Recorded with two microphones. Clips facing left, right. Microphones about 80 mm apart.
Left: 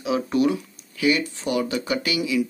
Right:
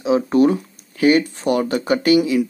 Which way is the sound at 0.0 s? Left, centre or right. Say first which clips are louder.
Right 6 dB; right.